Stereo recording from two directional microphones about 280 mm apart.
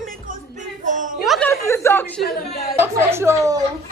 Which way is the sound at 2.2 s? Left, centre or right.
Left.